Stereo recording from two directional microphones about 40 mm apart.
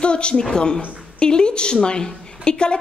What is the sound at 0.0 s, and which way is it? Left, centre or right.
A woman's voice, left.